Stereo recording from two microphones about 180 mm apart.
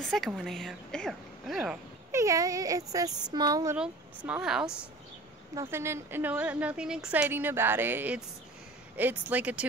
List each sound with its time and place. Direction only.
0.1 s speech: centre (ahead or behind)
2.1 s speech: 20° right (ahead or behind)
3.7 s speech: 5° right (ahead or behind)
5.5 s a woman's voice: 15° right (ahead or behind)